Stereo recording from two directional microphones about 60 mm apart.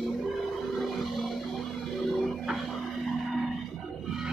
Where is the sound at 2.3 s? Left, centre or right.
Centre.